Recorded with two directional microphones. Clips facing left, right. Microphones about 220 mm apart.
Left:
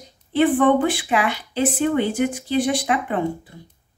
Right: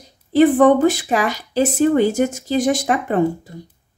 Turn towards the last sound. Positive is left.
turn(degrees=-40)  # may be behind; listen again after turning